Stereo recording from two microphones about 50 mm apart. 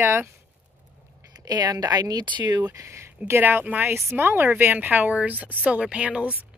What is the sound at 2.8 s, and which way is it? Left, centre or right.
Speech, right.